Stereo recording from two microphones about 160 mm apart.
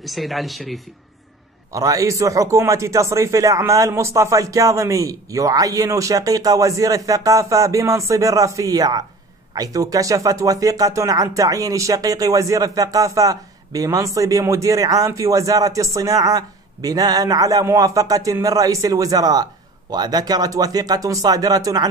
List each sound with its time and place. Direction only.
0.0 s speech: centre (ahead or behind)
1.7 s speech: 20° right (ahead or behind)